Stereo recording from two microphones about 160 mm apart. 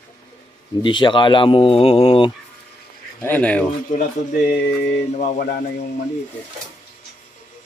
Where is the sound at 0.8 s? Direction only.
30° left (ahead or behind).